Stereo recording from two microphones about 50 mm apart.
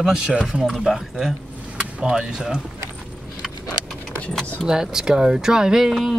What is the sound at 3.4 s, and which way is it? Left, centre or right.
Vehicle, centre.